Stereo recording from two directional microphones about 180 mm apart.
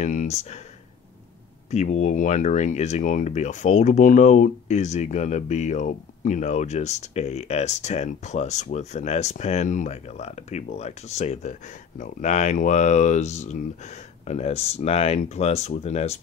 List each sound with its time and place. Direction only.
0.0 s speech: 45° left (ahead or behind)
1.7 s speech: 40° left (ahead or behind)